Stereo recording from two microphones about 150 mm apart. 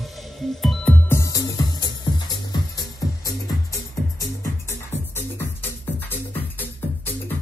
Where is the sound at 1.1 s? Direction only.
20° left (ahead or behind).